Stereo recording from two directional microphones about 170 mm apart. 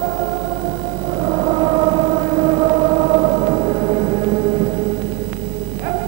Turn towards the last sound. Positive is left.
turn(degrees=-20)  # may be behind; listen again after turning